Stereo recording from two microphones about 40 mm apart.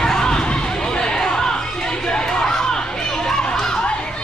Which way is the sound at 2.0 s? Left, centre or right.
Centre.